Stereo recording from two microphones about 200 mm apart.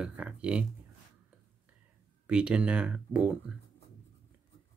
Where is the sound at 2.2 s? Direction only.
5° right (ahead or behind).